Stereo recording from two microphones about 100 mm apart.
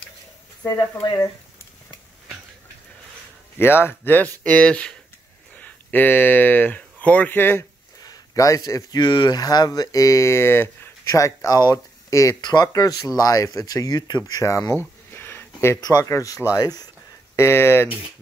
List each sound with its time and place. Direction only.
0.7 s speech: 40° left (ahead or behind)
3.5 s speech: 20° left (ahead or behind)
8.0 s speech: 35° left (ahead or behind)
12.4 s speech: 45° left (ahead or behind); by 14.8 s 30° left (ahead or behind)
14.8 s a sound: 20° left (ahead or behind)
15.8 s speech: 35° left (ahead or behind)
17.4 s speech: 25° left (ahead or behind)